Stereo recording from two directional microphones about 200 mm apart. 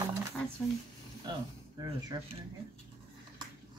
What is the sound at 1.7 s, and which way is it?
Speech, 20° right (ahead or behind).